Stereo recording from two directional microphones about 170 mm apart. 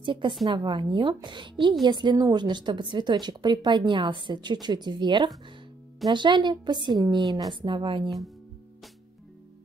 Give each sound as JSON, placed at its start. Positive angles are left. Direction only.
{"t": 0.0, "sound": "a woman's voice", "side_deg": -30}